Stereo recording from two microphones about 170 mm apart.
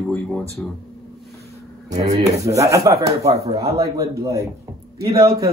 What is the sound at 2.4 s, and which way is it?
Speech, 20° right (ahead or behind).